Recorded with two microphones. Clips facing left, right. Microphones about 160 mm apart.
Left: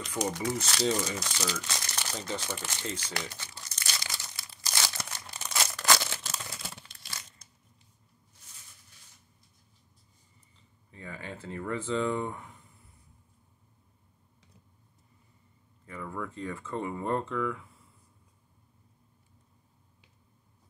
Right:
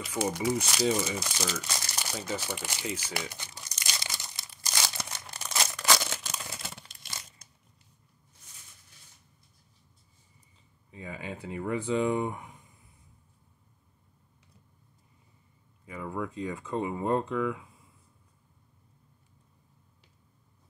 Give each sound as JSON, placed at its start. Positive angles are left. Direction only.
{"t": 0.0, "sound": "speech", "side_deg": -5}
{"t": 5.7, "sound": "a sound", "side_deg": 0}
{"t": 6.9, "sound": "crumpling", "side_deg": -25}
{"t": 10.9, "sound": "speech", "side_deg": -15}
{"t": 15.8, "sound": "speech", "side_deg": -15}